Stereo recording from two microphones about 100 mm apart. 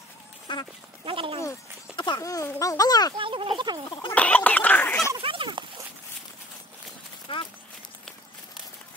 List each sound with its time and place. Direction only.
0.5 s duck: 55° left (ahead or behind)
1.0 s speech: 60° right (ahead or behind)
2.0 s a sound: 50° left (ahead or behind)
2.2 s speech: 35° left (ahead or behind)
3.2 s speech: 60° right (ahead or behind)
4.1 s chicken: 15° left (ahead or behind)
5.2 s a sound: 60° right (ahead or behind)
7.3 s horse: 60° left (ahead or behind)